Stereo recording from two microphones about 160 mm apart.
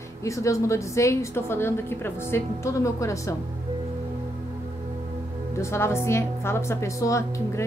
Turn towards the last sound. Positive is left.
turn(degrees=20)  # may be behind; listen again after turning